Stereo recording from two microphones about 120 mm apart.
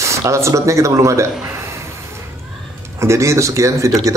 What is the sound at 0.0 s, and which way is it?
Speech, 25° right (ahead or behind).